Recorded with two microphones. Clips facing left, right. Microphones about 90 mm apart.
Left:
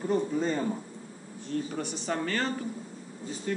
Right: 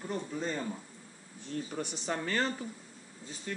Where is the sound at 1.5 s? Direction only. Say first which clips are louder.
Left 5 dB; 10° right (ahead or behind).